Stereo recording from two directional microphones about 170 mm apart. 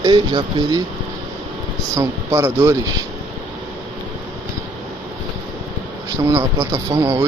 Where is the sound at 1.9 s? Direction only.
20° right (ahead or behind).